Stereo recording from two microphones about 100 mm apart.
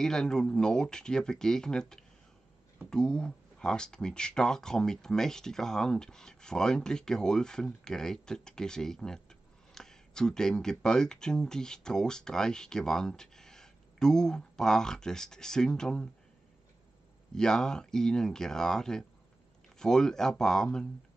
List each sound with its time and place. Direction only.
0.0 s speech: 5° left (ahead or behind)
17.3 s speech: 5° left (ahead or behind)